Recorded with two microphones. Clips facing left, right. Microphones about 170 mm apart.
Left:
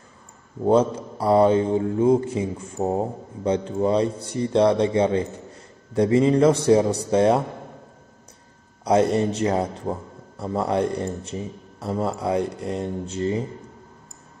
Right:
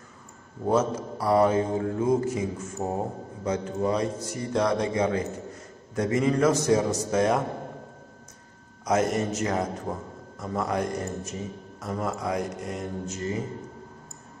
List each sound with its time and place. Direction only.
0.7 s mantra: 30° left (ahead or behind)
5.9 s speech: 30° left (ahead or behind)
8.8 s speech: 30° left (ahead or behind)